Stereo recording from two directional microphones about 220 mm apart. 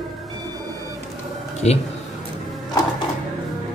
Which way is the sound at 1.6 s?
30° left (ahead or behind).